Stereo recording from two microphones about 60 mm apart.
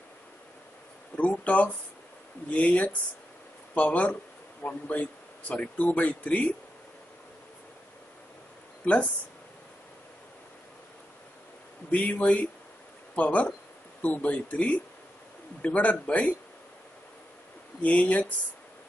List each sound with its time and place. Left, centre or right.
1.1 s speech: left
8.8 s speech: left
11.9 s speech: left
17.8 s speech: left